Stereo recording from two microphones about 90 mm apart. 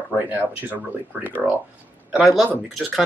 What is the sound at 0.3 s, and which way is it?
Speech, 20° right (ahead or behind).